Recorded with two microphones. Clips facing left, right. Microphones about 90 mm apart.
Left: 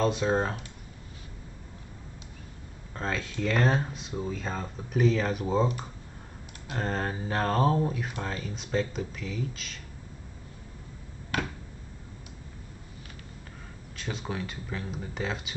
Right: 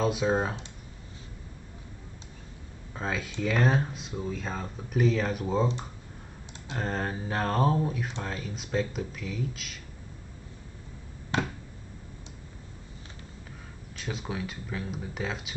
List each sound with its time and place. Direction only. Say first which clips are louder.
0.0 s speech: even; 5° right (ahead or behind)
2.9 s speech: even; 5° right (ahead or behind)
6.7 s speech: left 1 dB; centre (ahead or behind)
11.3 s a sound: right 2 dB; 25° right (ahead or behind)
13.9 s speech: even; centre (ahead or behind)